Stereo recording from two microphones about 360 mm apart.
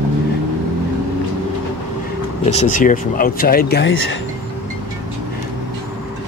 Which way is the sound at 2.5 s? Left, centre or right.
Centre.